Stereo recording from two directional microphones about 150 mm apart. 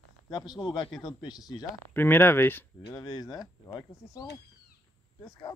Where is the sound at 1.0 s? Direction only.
25° left (ahead or behind).